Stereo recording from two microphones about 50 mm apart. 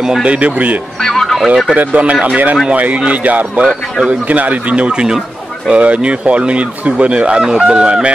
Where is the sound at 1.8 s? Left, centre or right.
Right.